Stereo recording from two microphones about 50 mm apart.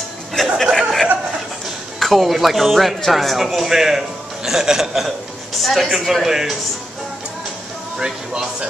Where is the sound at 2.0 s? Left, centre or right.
Centre.